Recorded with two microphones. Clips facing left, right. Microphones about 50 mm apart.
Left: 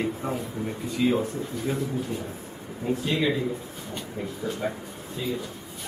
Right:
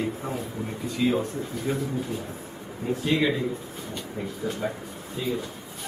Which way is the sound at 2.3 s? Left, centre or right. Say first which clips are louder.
Right 1 dB; centre.